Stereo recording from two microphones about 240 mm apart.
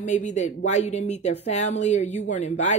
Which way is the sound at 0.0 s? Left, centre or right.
Left.